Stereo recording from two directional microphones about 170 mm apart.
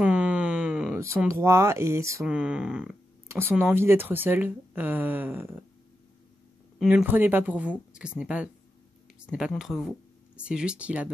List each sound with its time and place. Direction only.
0.0 s a sound: 5° right (ahead or behind)
0.9 s speech: 15° right (ahead or behind)
2.2 s speech: 5° right (ahead or behind)
6.8 s speech: 5° right (ahead or behind)